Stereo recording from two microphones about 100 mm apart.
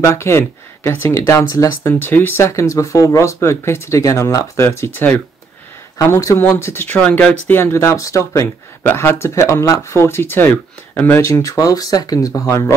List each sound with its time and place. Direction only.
0.0 s speech: 25° left (ahead or behind)